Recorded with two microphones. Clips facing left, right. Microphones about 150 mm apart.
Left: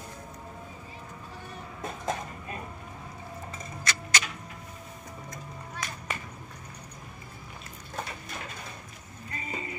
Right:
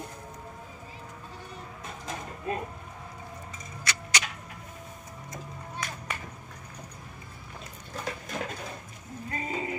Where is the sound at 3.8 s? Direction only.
15° right (ahead or behind).